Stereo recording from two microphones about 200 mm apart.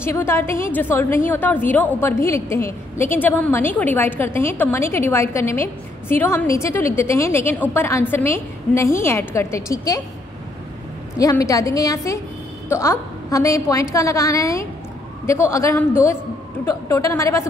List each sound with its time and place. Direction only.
0.0 s a woman's voice: 10° left (ahead or behind)
11.1 s a woman's voice: 15° left (ahead or behind)